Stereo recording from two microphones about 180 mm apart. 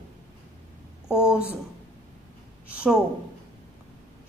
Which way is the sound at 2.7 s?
5° right (ahead or behind).